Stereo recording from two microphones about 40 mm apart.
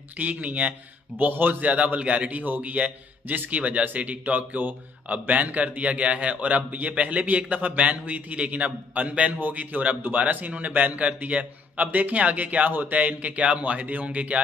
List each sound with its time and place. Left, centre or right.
0.2 s a man's voice: right
1.1 s speech: right
1.6 s a man's voice: right
2.4 s a man's voice: right